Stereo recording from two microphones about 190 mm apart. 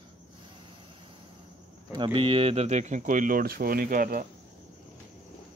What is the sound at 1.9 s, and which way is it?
Speech, 25° right (ahead or behind).